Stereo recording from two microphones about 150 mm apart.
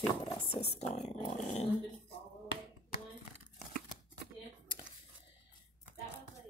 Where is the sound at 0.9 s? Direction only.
50° left (ahead or behind).